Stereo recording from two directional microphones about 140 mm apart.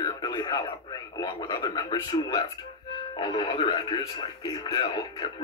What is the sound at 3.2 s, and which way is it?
Speech, 35° left (ahead or behind).